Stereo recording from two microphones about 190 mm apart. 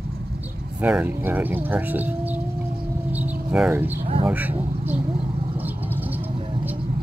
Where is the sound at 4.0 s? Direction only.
30° right (ahead or behind).